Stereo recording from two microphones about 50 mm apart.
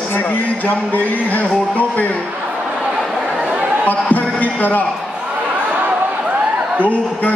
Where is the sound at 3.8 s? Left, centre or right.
Left.